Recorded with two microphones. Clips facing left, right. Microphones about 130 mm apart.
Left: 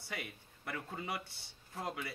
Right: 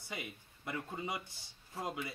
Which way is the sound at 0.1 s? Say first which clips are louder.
Even; 15° right (ahead or behind).